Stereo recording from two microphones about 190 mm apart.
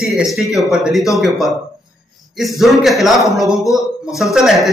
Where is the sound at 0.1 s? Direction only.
Centre (ahead or behind).